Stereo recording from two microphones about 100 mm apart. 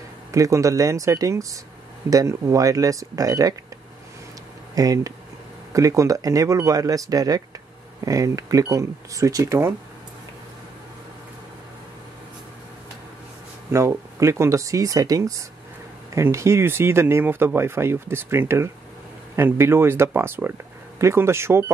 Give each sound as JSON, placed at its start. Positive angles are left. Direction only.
{"t": 0.3, "sound": "speech", "side_deg": -30}
{"t": 4.7, "sound": "speech", "side_deg": -35}
{"t": 13.7, "sound": "speech", "side_deg": -30}